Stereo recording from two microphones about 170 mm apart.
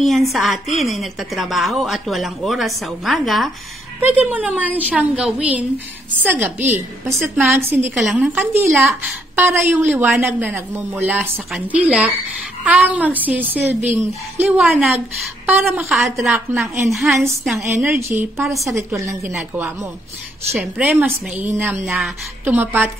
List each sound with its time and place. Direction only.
0.0 s a woman's voice: centre (ahead or behind)
7.9 s speech: centre (ahead or behind)
8.3 s a woman's voice: 15° right (ahead or behind)
8.6 s a woman's voice: centre (ahead or behind)
15.9 s speech: centre (ahead or behind)
16.5 s a woman's voice: 15° right (ahead or behind)
16.9 s speech: centre (ahead or behind)
17.8 s a woman's voice: 15° right (ahead or behind)